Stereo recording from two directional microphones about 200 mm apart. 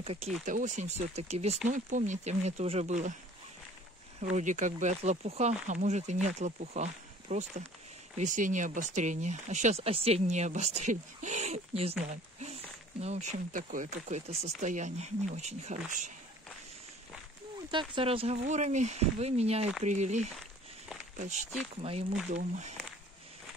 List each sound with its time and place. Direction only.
0.0 s speech: 30° right (ahead or behind)
4.2 s speech: 35° right (ahead or behind)
12.1 s a sound: 35° right (ahead or behind)
13.0 s speech: 35° right (ahead or behind)
17.6 s speech: 25° right (ahead or behind)